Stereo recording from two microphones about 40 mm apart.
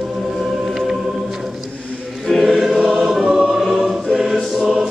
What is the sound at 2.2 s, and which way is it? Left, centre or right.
Choir, centre.